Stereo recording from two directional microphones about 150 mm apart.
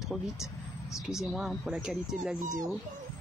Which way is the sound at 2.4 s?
25° right (ahead or behind).